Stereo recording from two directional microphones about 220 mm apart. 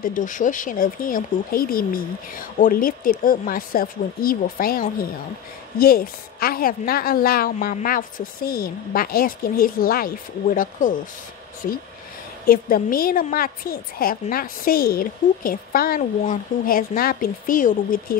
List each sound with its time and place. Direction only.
0.0 s a woman's voice: 35° left (ahead or behind)
12.4 s a woman's voice: 40° left (ahead or behind)